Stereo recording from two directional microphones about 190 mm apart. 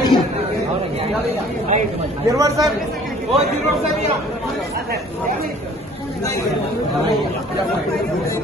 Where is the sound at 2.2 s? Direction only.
15° right (ahead or behind).